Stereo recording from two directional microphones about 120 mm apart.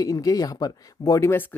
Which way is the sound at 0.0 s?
30° left (ahead or behind).